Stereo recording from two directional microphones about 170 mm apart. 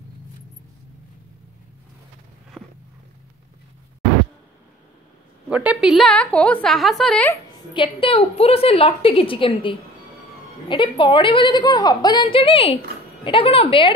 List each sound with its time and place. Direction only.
2.6 s walk: centre (ahead or behind)
5.5 s a woman's voice: 5° right (ahead or behind)
7.7 s a woman's voice: 30° left (ahead or behind)